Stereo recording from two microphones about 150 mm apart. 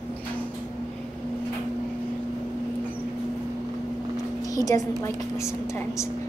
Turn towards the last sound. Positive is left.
turn(degrees=25)  # may be behind; listen again after turning